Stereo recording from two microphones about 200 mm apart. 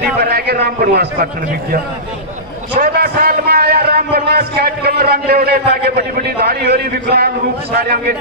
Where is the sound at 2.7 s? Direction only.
50° right (ahead or behind).